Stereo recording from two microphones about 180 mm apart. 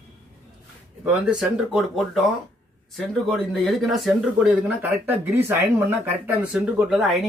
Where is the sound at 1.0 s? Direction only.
5° right (ahead or behind).